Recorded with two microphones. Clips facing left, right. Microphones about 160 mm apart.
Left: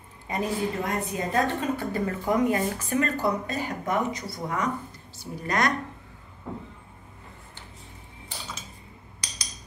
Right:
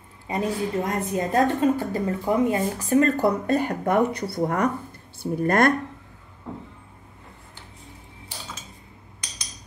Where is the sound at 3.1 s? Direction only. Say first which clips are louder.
Right 6 dB; 55° right (ahead or behind).